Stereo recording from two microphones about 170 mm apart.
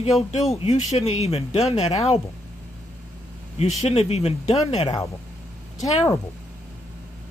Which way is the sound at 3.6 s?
40° left (ahead or behind).